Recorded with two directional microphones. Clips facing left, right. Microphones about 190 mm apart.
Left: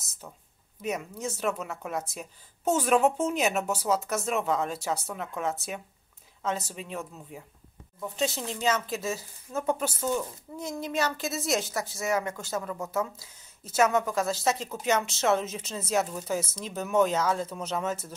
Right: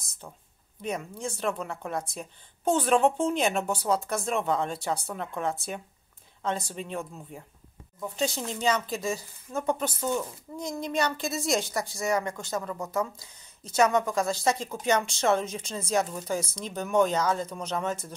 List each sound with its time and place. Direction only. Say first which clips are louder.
1.4 s speech: even; 5° left (ahead or behind)